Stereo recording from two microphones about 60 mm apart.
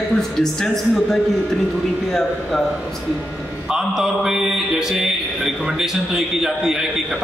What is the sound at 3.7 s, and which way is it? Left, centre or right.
Mantra, centre.